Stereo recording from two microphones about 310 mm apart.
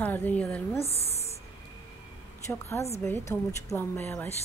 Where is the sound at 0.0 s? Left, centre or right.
Centre.